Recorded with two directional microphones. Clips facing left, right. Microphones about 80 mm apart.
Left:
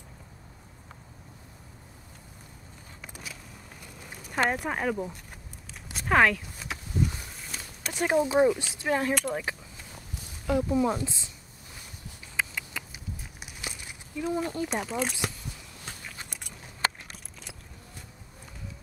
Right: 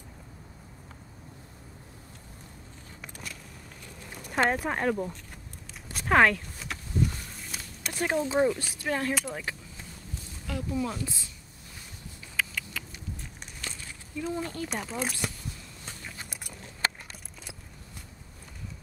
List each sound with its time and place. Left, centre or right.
4.3 s speech: centre
6.0 s a sound: centre
7.9 s speech: centre
12.4 s rodents: left
12.9 s walk: centre
14.7 s speech: centre